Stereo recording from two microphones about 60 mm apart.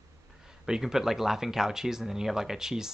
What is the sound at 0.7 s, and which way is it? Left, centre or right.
Speech, centre.